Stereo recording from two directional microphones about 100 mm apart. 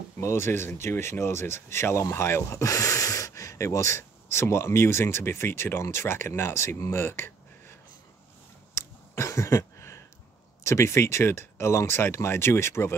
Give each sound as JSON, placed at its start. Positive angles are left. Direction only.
{"t": 0.2, "sound": "speech", "side_deg": 25}
{"t": 8.7, "sound": "a sound", "side_deg": 30}
{"t": 10.6, "sound": "speech", "side_deg": 30}